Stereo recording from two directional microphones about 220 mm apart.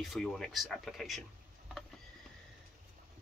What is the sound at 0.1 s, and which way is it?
Speech, centre (ahead or behind).